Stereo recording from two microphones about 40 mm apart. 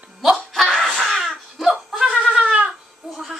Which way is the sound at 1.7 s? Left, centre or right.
Centre.